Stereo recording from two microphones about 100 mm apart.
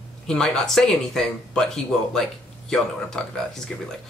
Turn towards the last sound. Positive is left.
turn(degrees=5)  # may be behind; listen again after turning